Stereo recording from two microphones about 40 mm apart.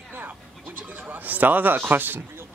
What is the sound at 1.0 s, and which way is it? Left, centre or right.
A man's voice, right.